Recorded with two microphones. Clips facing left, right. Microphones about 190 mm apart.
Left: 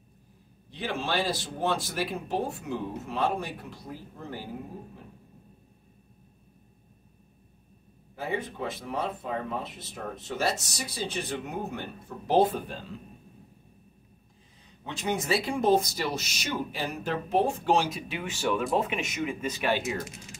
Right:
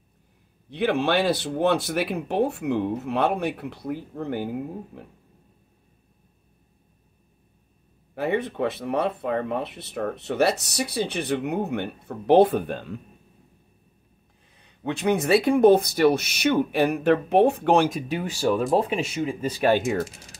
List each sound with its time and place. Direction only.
0.7 s speech: 65° right (ahead or behind)
8.1 s speech: 65° right (ahead or behind)
14.6 s speech: 60° right (ahead or behind)